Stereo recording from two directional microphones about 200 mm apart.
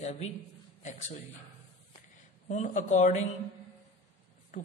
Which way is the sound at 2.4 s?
35° left (ahead or behind).